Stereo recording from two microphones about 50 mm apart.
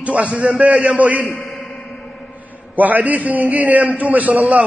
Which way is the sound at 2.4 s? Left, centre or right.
Right.